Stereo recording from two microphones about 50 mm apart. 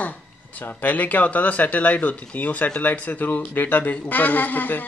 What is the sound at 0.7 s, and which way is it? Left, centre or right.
Speech, left.